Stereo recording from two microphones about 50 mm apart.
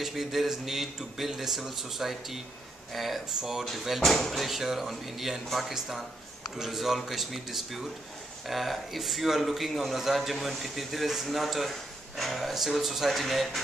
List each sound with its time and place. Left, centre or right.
0.0 s a man's voice: centre